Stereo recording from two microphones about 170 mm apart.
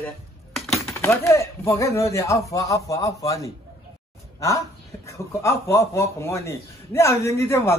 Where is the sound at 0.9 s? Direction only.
15° left (ahead or behind).